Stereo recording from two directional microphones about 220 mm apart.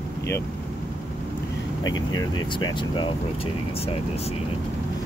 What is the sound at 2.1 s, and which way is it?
Speech, 20° left (ahead or behind).